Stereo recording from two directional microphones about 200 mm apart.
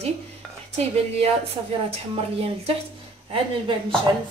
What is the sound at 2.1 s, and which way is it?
Speech, 30° right (ahead or behind).